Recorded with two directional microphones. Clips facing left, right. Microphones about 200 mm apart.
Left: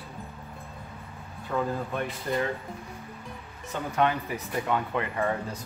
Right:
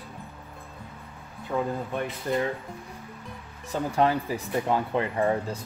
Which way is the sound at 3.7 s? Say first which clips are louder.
Right 3 dB; 30° right (ahead or behind).